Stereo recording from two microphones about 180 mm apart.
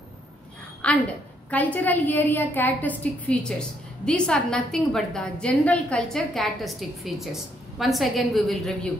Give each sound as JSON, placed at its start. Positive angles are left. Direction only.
{"t": 0.8, "sound": "a woman's voice", "side_deg": 5}